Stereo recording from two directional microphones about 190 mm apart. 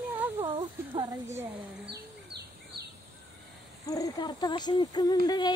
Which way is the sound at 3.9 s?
20° left (ahead or behind).